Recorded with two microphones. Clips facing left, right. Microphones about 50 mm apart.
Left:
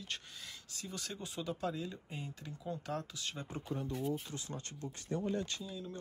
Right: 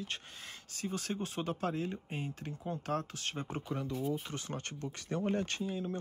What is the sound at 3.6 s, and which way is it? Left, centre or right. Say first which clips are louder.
Speech: left 1 dB; right.